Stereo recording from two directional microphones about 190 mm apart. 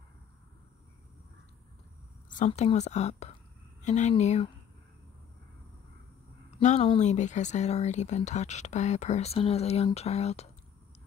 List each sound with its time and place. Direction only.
2.2 s speech: 40° left (ahead or behind)
6.6 s speech: 35° left (ahead or behind)